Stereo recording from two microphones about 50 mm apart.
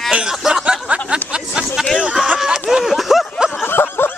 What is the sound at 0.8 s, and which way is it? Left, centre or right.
Chatter, right.